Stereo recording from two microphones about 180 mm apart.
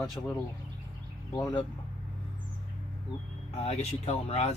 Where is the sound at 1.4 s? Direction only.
25° left (ahead or behind).